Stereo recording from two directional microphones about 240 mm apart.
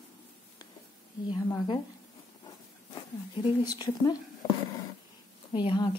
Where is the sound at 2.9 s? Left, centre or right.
Centre.